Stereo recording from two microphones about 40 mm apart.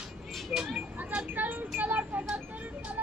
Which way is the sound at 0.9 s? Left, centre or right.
Right.